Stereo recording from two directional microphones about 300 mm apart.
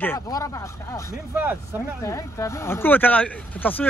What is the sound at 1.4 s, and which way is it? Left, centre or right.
Speech, centre.